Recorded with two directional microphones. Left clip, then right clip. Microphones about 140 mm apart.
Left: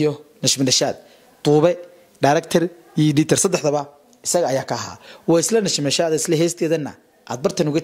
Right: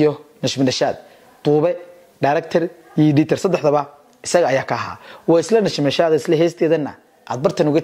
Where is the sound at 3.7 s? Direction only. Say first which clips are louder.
Right 4 dB; 20° right (ahead or behind).